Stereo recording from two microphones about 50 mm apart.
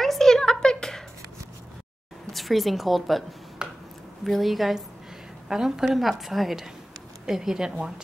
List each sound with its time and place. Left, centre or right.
0.0 s a sound: centre
2.3 s a woman's voice: centre
3.6 s finger snapping: centre
4.2 s a woman's voice: centre